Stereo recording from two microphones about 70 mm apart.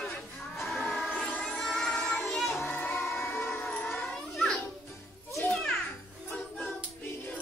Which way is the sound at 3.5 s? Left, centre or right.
Centre.